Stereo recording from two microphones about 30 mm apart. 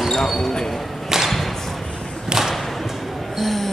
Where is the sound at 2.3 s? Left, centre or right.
Right.